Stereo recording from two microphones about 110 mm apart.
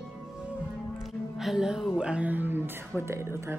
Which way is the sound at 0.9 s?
Centre (ahead or behind).